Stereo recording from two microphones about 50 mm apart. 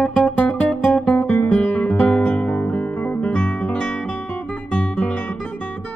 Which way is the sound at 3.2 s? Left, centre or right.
Left.